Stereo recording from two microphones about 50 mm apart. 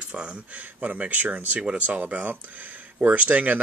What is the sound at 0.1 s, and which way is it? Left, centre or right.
Speech, right.